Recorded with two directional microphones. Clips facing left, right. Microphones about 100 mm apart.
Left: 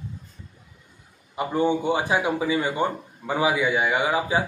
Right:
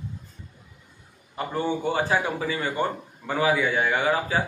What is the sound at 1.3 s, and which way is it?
Speech, 15° left (ahead or behind).